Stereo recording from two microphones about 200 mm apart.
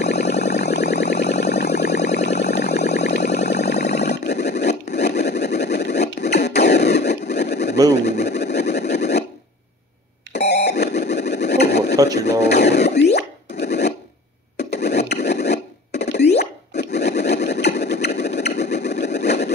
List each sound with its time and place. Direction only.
0.0 s music: 55° left (ahead or behind)
2.0 s a sound: 55° left (ahead or behind)
2.4 s music: 55° left (ahead or behind)
3.4 s a sound: 55° left (ahead or behind)
7.9 s pigeon: 55° left (ahead or behind)
8.9 s scratch: 55° left (ahead or behind)
10.3 s a sound: 55° left (ahead or behind)
11.0 s engine: 55° left (ahead or behind)
11.6 s a sound: 55° left (ahead or behind)
13.1 s plop: 55° left (ahead or behind)
14.6 s rub: 55° left (ahead or behind)
16.3 s plop: 55° left (ahead or behind)
17.3 s engine: 55° left (ahead or behind)